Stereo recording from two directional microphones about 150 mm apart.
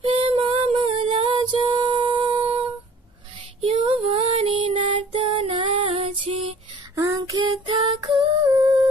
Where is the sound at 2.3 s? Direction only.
35° right (ahead or behind).